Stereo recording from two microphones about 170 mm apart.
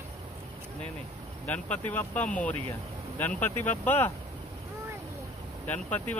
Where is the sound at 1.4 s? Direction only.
10° left (ahead or behind).